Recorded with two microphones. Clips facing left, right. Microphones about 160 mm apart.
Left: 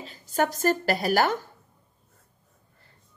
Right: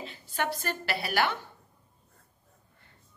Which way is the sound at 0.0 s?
40° left (ahead or behind).